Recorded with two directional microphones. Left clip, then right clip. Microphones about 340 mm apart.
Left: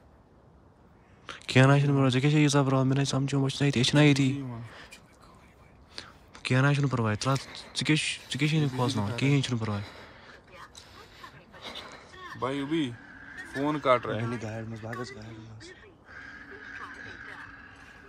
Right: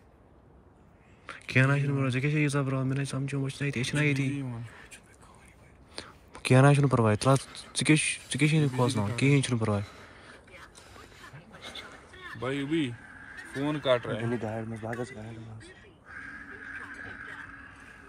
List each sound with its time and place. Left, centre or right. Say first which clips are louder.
1.2 s a man's voice: left 3 dB; centre
5.9 s speech: right 1 dB; centre
12.2 s speech: left 1 dB; centre
14.3 s speech: right 3 dB; centre
16.2 s vehicle: right 2 dB; centre